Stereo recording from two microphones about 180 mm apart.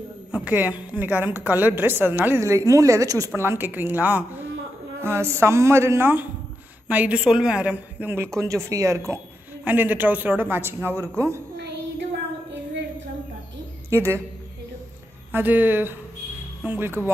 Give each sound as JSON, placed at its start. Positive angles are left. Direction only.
{"t": 0.3, "sound": "a woman's voice", "side_deg": -10}
{"t": 13.8, "sound": "a woman's voice", "side_deg": -15}
{"t": 15.3, "sound": "a woman's voice", "side_deg": -10}